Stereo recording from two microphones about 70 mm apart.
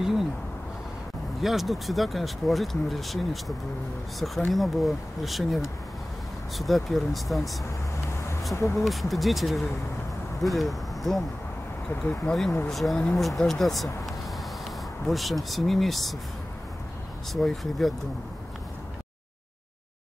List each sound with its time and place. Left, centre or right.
0.0 s a sound: centre
1.4 s speech: centre
8.7 s speech: centre
11.9 s speech: left
12.3 s speech: centre
15.0 s speech: centre
17.3 s speech: centre